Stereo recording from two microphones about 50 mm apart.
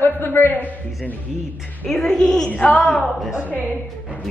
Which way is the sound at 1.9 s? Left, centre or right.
Centre.